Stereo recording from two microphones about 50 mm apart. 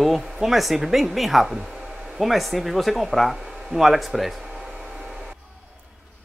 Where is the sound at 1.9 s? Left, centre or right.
Centre.